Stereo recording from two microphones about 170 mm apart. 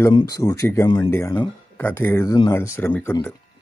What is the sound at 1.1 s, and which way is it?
Speech, 15° left (ahead or behind).